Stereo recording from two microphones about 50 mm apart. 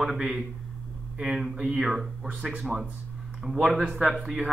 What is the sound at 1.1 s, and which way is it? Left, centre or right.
Speech, centre.